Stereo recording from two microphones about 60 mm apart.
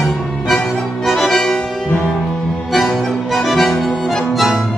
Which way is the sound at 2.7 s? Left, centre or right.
Centre.